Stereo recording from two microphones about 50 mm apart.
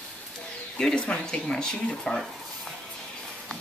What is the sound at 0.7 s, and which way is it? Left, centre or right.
Speech, centre.